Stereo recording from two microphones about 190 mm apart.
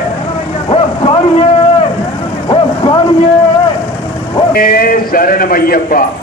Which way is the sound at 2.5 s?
25° left (ahead or behind).